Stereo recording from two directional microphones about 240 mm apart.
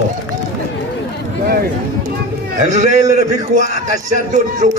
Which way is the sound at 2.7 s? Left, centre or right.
Right.